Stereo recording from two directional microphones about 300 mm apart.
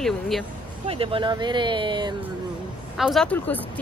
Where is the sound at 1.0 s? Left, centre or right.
Centre.